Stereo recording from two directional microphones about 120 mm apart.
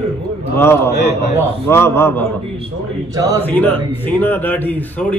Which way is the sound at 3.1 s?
30° right (ahead or behind).